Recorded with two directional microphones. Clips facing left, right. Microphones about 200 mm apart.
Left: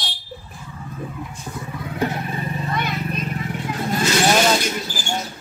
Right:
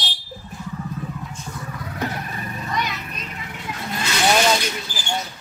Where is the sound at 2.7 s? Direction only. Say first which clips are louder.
Right 1 dB; 55° left (ahead or behind).